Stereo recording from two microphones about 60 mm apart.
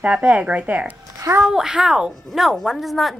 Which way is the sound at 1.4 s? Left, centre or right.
Centre.